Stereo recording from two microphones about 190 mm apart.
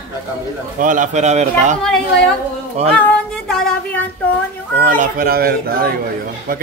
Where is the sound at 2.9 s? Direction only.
5° left (ahead or behind).